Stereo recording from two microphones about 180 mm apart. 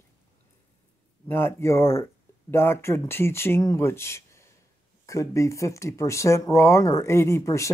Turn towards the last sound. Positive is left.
turn(degrees=15)  # may be behind; listen again after turning